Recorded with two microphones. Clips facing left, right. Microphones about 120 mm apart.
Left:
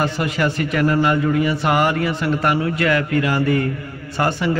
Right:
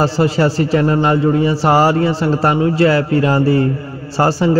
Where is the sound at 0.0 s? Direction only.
30° right (ahead or behind).